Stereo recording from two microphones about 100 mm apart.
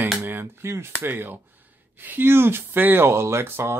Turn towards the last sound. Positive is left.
turn(degrees=-25)  # may be behind; listen again after turning